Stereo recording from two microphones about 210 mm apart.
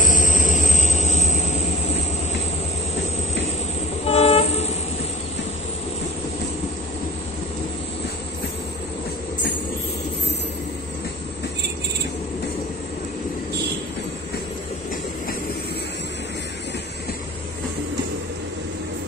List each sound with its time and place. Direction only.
0.0 s vehicle: 40° left (ahead or behind)
4.0 s vehicle: 30° left (ahead or behind)